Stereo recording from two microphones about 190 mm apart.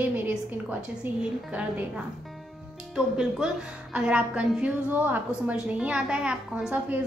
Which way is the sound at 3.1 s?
5° right (ahead or behind).